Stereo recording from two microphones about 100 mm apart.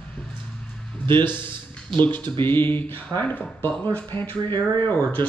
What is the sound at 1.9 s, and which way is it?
Speech, 20° left (ahead or behind).